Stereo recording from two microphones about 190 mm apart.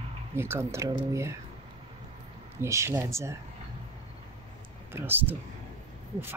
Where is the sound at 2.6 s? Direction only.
15° right (ahead or behind).